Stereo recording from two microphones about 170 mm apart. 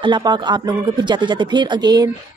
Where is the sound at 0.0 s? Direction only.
25° right (ahead or behind).